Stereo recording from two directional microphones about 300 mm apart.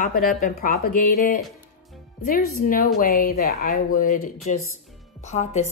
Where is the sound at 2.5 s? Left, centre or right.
Left.